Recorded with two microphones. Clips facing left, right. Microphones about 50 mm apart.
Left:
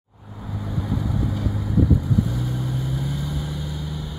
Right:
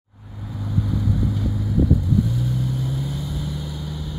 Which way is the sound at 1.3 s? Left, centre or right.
Left.